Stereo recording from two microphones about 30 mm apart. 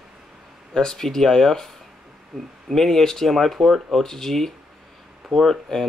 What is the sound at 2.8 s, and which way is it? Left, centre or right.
Speech, centre.